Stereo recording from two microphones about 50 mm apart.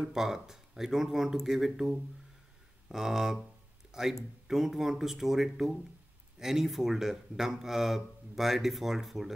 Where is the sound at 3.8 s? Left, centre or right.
Centre.